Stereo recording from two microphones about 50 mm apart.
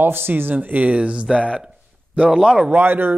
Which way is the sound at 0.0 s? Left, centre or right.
Right.